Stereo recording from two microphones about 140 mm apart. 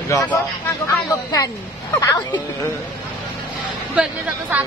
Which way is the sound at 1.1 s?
25° left (ahead or behind).